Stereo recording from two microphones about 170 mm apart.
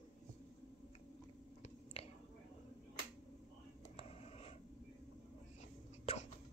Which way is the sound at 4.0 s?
35° left (ahead or behind).